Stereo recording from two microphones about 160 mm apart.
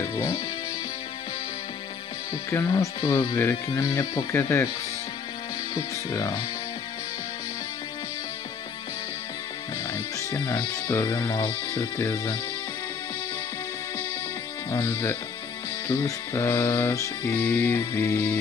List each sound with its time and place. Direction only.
0.0 s speech: 20° left (ahead or behind)
2.5 s speech: 20° left (ahead or behind)
5.8 s speech: 20° left (ahead or behind)
9.9 s music: 20° left (ahead or behind)
10.7 s speech: 20° left (ahead or behind)
14.7 s speech: 15° left (ahead or behind)